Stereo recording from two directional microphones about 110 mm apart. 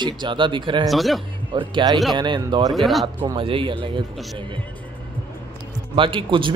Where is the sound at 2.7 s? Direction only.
Centre (ahead or behind).